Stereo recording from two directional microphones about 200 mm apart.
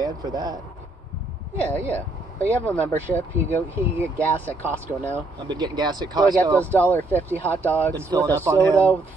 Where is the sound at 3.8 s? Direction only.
10° right (ahead or behind).